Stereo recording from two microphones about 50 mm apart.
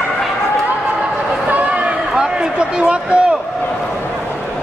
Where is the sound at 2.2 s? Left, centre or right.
Centre.